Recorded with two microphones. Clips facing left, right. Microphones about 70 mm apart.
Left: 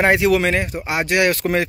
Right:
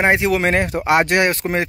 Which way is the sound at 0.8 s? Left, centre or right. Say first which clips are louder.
Right 5 dB; right.